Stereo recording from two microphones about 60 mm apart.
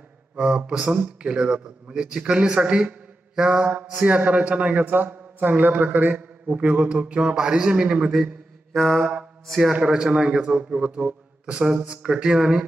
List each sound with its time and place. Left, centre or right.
0.4 s a man's voice: centre
8.7 s mantra: centre
9.7 s a man's voice: centre